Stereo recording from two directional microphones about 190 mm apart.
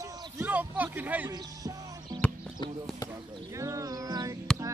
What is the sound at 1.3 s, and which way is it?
Music, 20° right (ahead or behind).